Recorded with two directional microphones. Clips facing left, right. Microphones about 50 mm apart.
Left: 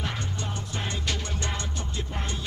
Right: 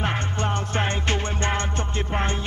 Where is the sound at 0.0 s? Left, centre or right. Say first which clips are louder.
Right 7 dB; right.